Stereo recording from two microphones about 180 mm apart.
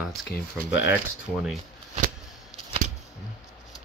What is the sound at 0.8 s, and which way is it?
Speech, 5° right (ahead or behind).